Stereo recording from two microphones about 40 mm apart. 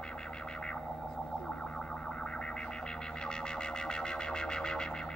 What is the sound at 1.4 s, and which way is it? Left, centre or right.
Music, centre.